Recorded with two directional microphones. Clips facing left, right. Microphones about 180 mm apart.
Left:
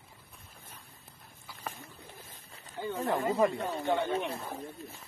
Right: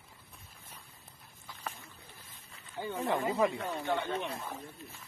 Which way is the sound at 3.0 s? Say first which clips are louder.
Left 1 dB; 40° left (ahead or behind).